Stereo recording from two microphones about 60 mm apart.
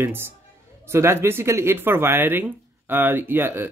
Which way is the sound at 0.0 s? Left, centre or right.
Right.